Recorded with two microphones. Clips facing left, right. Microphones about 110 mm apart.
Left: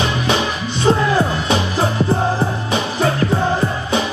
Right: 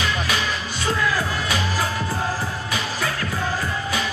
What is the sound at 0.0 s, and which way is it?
Music, 25° left (ahead or behind).